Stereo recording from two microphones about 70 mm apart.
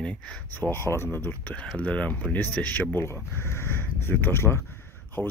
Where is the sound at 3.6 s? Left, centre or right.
Left.